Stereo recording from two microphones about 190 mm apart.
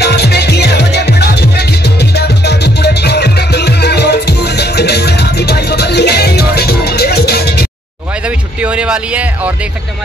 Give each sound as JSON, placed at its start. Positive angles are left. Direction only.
{"t": 0.0, "sound": "music", "side_deg": 60}
{"t": 8.5, "sound": "speech", "side_deg": -5}